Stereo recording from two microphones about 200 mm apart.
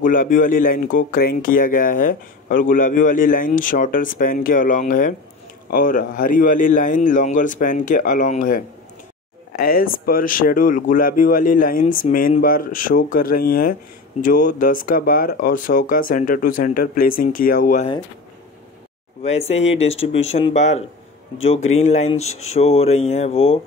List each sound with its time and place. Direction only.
0.0 s speech: 45° left (ahead or behind)
19.2 s speech: 30° left (ahead or behind)